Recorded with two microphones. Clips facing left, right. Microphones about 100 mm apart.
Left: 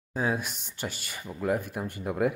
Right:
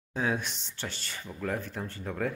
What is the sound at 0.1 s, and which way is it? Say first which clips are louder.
Speech: left 1 dB; 5° left (ahead or behind).